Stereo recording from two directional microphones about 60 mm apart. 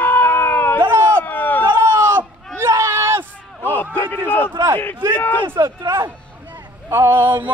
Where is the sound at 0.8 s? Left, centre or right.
Right.